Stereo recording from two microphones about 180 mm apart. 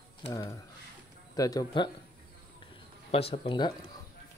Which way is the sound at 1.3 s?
20° left (ahead or behind).